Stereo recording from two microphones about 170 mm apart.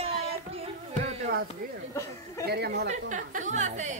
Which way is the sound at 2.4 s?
70° right (ahead or behind).